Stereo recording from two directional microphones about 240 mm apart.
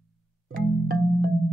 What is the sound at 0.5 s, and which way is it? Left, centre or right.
Marimba, right.